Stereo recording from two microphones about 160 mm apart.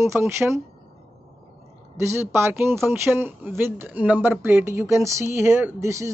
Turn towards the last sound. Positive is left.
turn(degrees=-20)  # may be behind; listen again after turning